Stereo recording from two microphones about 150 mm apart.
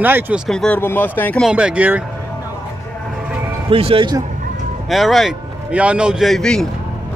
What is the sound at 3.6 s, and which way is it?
Speech, 40° right (ahead or behind).